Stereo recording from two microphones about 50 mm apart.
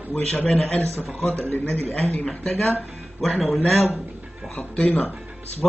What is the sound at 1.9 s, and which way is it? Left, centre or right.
Speech, left.